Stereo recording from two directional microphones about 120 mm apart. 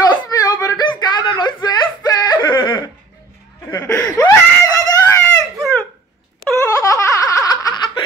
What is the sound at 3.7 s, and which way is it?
Laughter, 25° left (ahead or behind).